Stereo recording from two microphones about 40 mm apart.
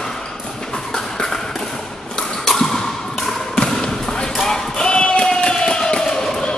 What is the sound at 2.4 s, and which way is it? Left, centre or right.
Basketball bounce, centre.